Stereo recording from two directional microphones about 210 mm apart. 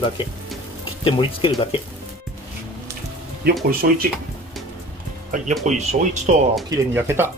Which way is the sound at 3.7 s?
45° right (ahead or behind).